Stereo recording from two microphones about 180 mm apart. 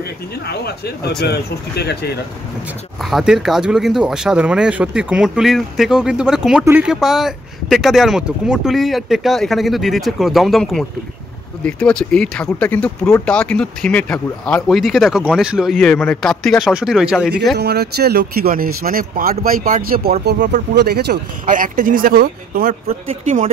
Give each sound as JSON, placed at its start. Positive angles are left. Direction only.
{"t": 1.2, "sound": "speech", "side_deg": 65}
{"t": 3.0, "sound": "speech", "side_deg": 0}
{"t": 17.6, "sound": "speech", "side_deg": -65}
{"t": 20.7, "sound": "speech", "side_deg": -65}
{"t": 21.5, "sound": "speech", "side_deg": -50}
{"t": 22.8, "sound": "speech", "side_deg": -35}